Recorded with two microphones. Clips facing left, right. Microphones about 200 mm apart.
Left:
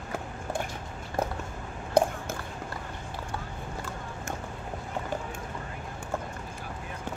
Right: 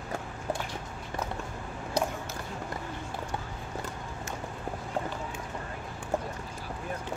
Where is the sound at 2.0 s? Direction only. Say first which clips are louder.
Left 7 dB; 55° left (ahead or behind).